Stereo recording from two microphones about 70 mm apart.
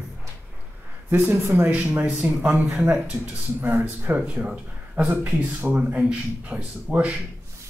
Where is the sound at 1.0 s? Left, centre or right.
Right.